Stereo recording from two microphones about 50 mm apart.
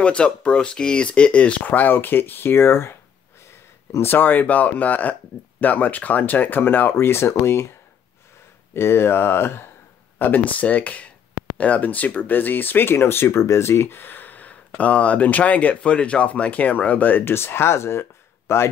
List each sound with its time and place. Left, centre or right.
0.0 s speech: left
1.7 s speech: left
4.0 s speech: left
8.7 s speech: left
10.1 s speech: left
13.9 s speech: left
17.2 s speech: left